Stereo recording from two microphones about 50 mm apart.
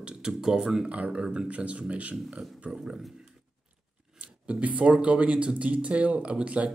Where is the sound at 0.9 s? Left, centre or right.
Right.